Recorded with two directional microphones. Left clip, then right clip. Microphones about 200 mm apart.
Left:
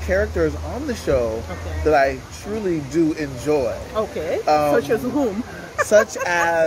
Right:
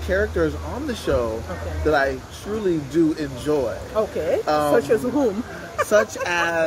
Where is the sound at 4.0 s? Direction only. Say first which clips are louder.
Right 2 dB; 15° right (ahead or behind).